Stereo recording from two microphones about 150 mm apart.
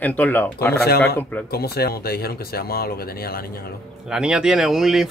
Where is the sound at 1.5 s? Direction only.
90° left.